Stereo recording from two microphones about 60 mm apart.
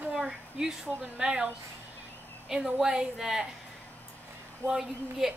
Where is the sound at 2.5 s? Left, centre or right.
Centre.